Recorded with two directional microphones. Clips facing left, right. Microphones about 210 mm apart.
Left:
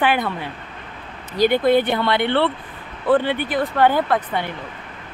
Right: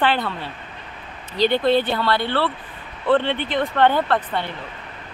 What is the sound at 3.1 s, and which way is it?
Speech, 10° left (ahead or behind).